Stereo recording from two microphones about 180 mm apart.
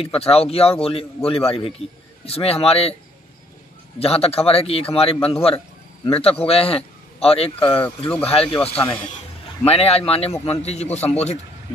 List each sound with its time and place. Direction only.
0.2 s a man's voice: 35° left (ahead or behind)
4.0 s a man's voice: 35° left (ahead or behind)
7.6 s speech: 10° left (ahead or behind)
8.3 s a man's voice: 30° left (ahead or behind)
8.7 s speech: 15° left (ahead or behind)
9.7 s a man's voice: 35° left (ahead or behind)
10.3 s speech: 10° left (ahead or behind)
10.6 s a man's voice: 35° left (ahead or behind)